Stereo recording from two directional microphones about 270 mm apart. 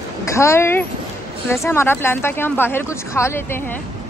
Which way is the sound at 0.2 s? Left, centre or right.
Centre.